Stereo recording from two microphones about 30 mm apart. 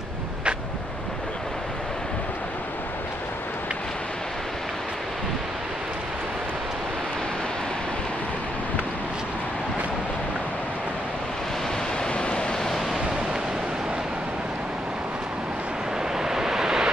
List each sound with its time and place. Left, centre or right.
12.1 s waves: left
12.6 s waves: centre
16.2 s vehicle: centre